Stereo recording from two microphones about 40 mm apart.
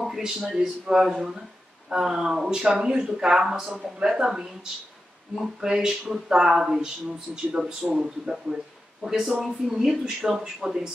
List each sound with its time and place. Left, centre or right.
0.0 s speech: centre
5.6 s speech: centre
7.6 s speech: centre
7.9 s speech: centre